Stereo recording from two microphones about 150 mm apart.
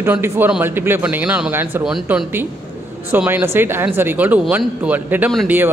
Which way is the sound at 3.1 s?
15° right (ahead or behind).